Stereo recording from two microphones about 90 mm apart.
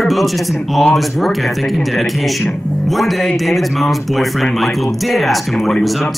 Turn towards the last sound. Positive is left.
turn(degrees=0)  # may be behind; listen again after turning